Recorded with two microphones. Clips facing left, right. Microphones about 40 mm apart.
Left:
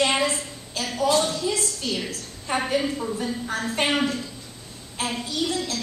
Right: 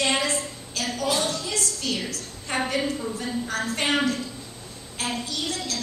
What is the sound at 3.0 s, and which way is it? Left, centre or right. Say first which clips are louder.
Speech: left 1 dB; centre.